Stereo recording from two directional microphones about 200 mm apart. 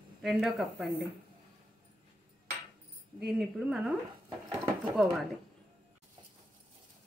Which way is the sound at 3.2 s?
Centre (ahead or behind).